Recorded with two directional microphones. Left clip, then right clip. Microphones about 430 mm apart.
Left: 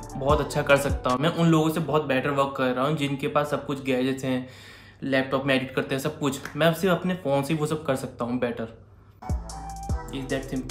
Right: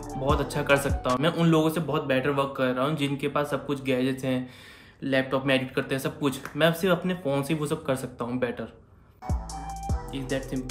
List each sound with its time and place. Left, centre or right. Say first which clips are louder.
0.1 s speech: left 3 dB; centre
9.2 s music: right 1 dB; centre